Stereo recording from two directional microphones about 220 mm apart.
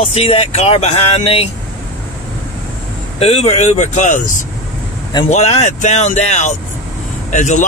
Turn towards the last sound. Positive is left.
turn(degrees=35)  # may be behind; listen again after turning